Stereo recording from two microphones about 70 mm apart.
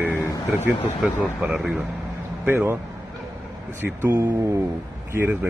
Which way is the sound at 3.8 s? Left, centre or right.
Right.